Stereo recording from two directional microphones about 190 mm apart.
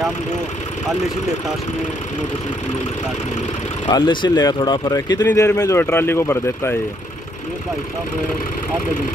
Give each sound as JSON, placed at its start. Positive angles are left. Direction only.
{"t": 3.9, "sound": "speech", "side_deg": 25}